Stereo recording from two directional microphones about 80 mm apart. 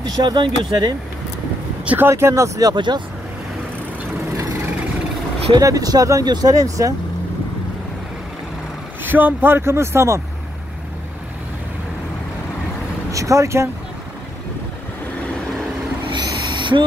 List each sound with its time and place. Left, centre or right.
0.2 s speech: right
2.0 s speech: right
2.7 s speech: right
5.6 s speech: right
9.0 s speech: right
13.1 s speech: right
16.1 s owl: right